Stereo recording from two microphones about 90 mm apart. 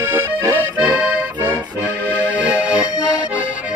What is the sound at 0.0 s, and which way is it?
Accordion, 30° right (ahead or behind).